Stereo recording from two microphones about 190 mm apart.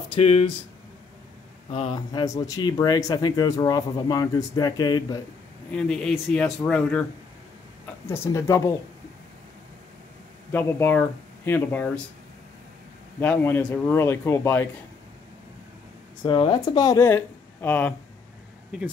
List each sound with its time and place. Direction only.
0.1 s speech: 30° left (ahead or behind)
1.7 s speech: 30° left (ahead or behind)
5.7 s speech: 5° left (ahead or behind)
8.1 s speech: 15° left (ahead or behind)
10.5 s speech: 10° left (ahead or behind)
13.2 s speech: 10° left (ahead or behind)
16.3 s speech: 25° left (ahead or behind); by 17.9 s 10° left (ahead or behind)